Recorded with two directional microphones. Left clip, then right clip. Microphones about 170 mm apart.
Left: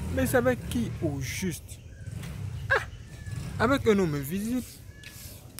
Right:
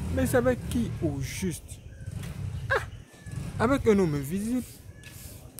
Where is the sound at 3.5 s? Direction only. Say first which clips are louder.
Even; 10° right (ahead or behind).